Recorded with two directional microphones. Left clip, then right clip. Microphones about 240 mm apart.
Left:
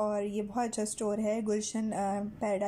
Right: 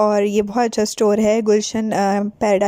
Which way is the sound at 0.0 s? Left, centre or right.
Right.